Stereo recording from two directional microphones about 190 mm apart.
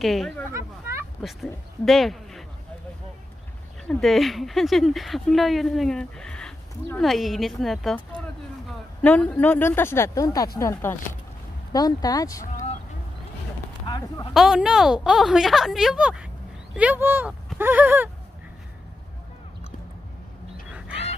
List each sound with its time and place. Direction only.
0.0 s speech: centre (ahead or behind)
3.8 s speech: 5° left (ahead or behind)
9.0 s speech: 5° left (ahead or behind)
13.8 s speech: 25° left (ahead or behind)
14.3 s speech: centre (ahead or behind)